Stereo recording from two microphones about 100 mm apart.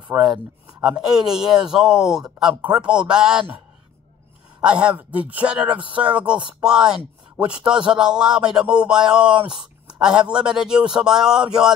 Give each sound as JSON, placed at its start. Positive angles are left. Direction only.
{"t": 0.1, "sound": "a man's voice", "side_deg": -15}
{"t": 0.8, "sound": "a man's voice", "side_deg": -5}
{"t": 4.6, "sound": "a man's voice", "side_deg": -10}